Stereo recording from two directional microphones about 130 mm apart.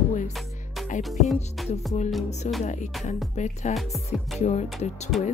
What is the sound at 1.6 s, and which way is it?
Music, centre (ahead or behind).